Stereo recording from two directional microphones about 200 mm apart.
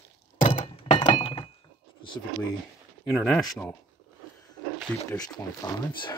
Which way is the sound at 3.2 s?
5° left (ahead or behind).